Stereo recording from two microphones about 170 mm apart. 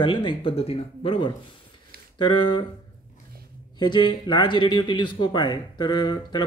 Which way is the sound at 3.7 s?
25° left (ahead or behind).